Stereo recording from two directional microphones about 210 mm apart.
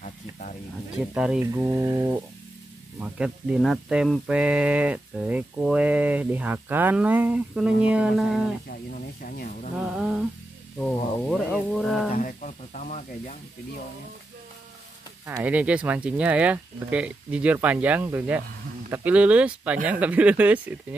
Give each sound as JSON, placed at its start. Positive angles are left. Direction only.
{"t": 0.9, "sound": "speech", "side_deg": -5}
{"t": 8.6, "sound": "speech", "side_deg": 40}
{"t": 9.8, "sound": "speech", "side_deg": -5}
{"t": 12.1, "sound": "speech", "side_deg": 40}
{"t": 15.2, "sound": "speech", "side_deg": -10}